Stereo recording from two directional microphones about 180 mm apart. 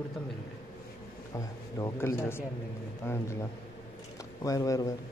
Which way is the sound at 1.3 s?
20° left (ahead or behind).